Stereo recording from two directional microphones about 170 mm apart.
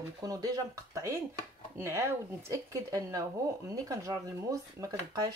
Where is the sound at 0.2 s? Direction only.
20° right (ahead or behind).